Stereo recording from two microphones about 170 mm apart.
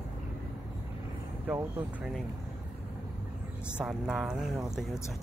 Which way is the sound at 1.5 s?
10° right (ahead or behind).